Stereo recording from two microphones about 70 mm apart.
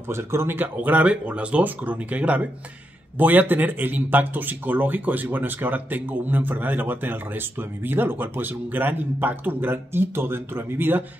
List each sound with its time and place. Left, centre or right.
0.1 s speech: right